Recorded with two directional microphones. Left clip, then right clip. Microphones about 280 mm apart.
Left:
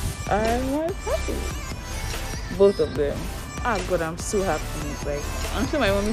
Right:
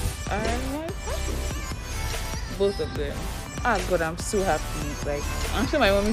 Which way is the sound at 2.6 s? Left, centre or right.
Left.